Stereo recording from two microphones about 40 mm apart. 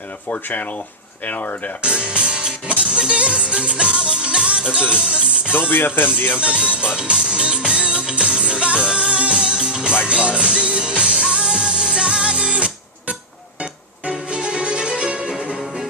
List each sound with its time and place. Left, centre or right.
0.3 s speech: left
1.8 s music: right
5.7 s speech: left
6.4 s music: right
13.6 s violin: right